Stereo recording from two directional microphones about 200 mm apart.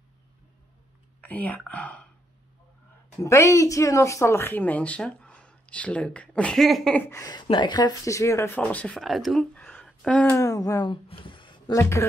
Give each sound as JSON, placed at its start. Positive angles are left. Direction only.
{"t": 1.2, "sound": "speech", "side_deg": 5}
{"t": 3.2, "sound": "speech", "side_deg": 15}
{"t": 10.3, "sound": "speech", "side_deg": 15}